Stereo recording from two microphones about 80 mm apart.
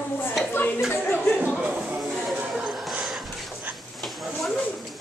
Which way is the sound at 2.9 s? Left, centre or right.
Centre.